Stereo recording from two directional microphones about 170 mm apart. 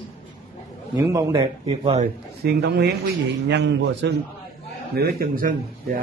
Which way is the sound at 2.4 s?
75° right (ahead or behind).